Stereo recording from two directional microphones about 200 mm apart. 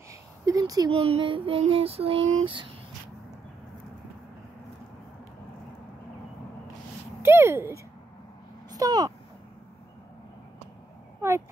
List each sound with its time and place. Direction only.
0.5 s child singing: 20° right (ahead or behind)
7.2 s speech: 10° right (ahead or behind)
8.7 s a sound: 20° right (ahead or behind)
11.1 s dog: 15° right (ahead or behind)